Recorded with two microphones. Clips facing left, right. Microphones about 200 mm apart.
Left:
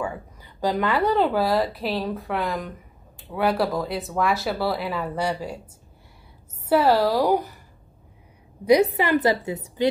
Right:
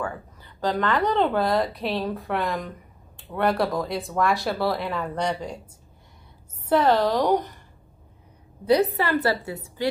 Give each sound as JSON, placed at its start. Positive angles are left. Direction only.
{"t": 0.0, "sound": "a woman's voice", "side_deg": 10}
{"t": 6.7, "sound": "a woman's voice", "side_deg": 10}
{"t": 8.6, "sound": "a woman's voice", "side_deg": 15}